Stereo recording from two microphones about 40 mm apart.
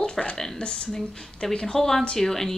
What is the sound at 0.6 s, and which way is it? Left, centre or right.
A woman's voice, left.